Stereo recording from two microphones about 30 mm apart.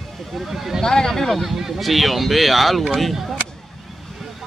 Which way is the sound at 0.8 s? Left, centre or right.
Centre.